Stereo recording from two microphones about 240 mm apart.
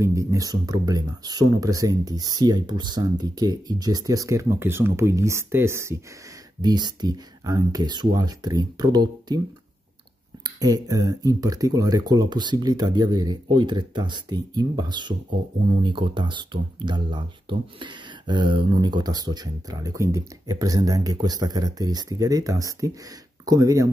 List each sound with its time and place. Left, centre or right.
0.0 s speech: centre
10.4 s speech: centre